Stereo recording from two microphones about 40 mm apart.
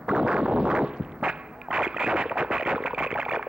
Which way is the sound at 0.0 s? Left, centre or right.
Right.